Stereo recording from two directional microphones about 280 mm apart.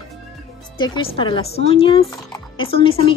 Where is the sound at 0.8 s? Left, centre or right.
Centre.